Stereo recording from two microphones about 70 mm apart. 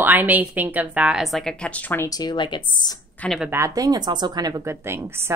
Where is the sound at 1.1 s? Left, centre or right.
Centre.